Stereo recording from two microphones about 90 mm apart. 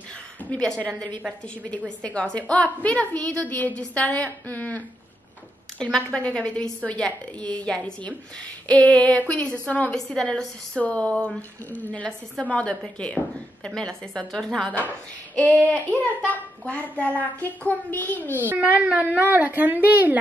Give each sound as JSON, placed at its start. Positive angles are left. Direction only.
{"t": 0.5, "sound": "a woman's voice", "side_deg": 10}
{"t": 2.0, "sound": "a woman's voice", "side_deg": 10}
{"t": 5.8, "sound": "a woman's voice", "side_deg": 5}
{"t": 15.3, "sound": "a sound", "side_deg": 15}
{"t": 15.6, "sound": "speech", "side_deg": -15}
{"t": 16.3, "sound": "a child's voice", "side_deg": 15}
{"t": 18.5, "sound": "a woman's voice", "side_deg": -15}